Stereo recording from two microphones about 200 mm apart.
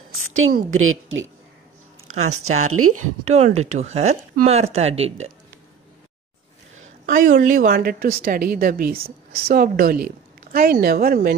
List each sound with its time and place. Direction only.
0.2 s a woman's voice: 90° right
2.7 s speech: 90° right
3.3 s speech: 35° right (ahead or behind)
7.1 s a woman's voice: 40° right (ahead or behind)